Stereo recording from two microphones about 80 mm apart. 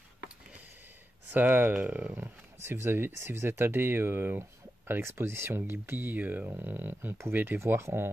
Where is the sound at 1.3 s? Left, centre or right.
Right.